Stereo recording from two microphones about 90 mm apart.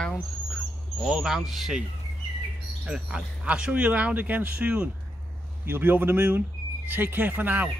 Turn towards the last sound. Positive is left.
turn(degrees=-20)  # may be behind; listen again after turning